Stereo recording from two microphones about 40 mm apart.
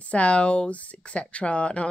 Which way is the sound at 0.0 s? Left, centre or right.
Left.